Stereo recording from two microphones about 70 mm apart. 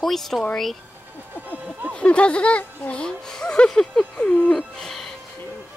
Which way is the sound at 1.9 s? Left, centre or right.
Centre.